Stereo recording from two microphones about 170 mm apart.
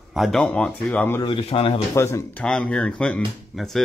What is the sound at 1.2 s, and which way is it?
Speech, 30° left (ahead or behind).